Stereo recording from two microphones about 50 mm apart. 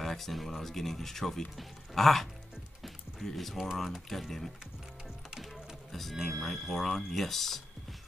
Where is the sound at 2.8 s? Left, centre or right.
Centre.